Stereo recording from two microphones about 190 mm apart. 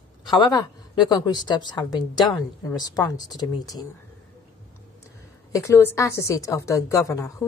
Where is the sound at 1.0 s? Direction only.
20° left (ahead or behind).